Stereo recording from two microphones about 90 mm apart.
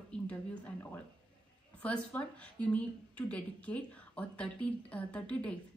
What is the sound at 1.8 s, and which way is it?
A woman's voice, 15° left (ahead or behind).